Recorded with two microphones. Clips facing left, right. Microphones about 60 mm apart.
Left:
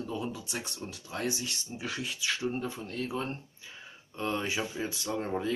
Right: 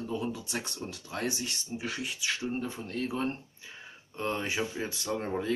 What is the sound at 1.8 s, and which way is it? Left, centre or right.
Speech, centre.